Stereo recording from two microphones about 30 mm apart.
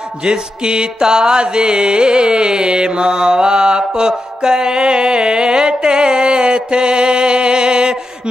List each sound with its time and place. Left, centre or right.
0.2 s music: right